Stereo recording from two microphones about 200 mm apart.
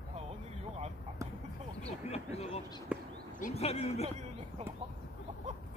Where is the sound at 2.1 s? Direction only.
30° left (ahead or behind).